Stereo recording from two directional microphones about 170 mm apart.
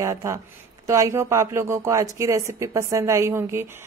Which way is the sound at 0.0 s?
20° right (ahead or behind).